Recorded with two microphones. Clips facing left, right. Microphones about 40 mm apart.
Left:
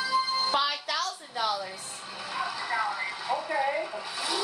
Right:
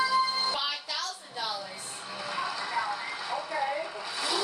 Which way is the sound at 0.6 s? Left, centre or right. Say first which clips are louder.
Left 5 dB; left.